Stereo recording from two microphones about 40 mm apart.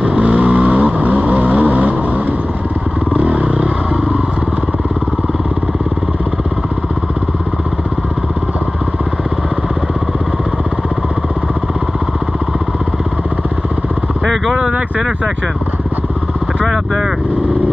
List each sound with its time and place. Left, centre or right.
0.0 s vehicle: right
3.1 s vehicle: right
16.6 s vehicle: centre